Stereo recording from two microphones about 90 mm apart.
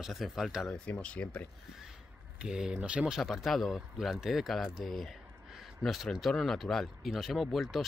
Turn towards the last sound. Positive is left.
turn(degrees=0)  # may be behind; listen again after turning